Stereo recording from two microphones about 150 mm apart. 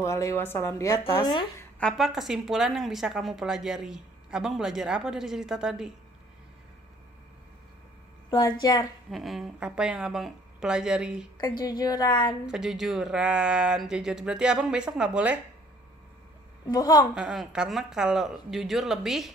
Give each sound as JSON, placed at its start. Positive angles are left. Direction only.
{"t": 0.0, "sound": "a woman's voice", "side_deg": 20}
{"t": 1.8, "sound": "a woman's voice", "side_deg": 5}
{"t": 8.4, "sound": "a woman's voice", "side_deg": 25}
{"t": 9.1, "sound": "a woman's voice", "side_deg": 0}
{"t": 11.3, "sound": "a woman's voice", "side_deg": 30}
{"t": 12.4, "sound": "a woman's voice", "side_deg": -5}
{"t": 16.6, "sound": "a woman's voice", "side_deg": 25}
{"t": 17.1, "sound": "a woman's voice", "side_deg": -5}